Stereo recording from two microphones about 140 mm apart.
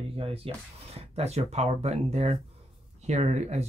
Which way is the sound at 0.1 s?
45° right (ahead or behind).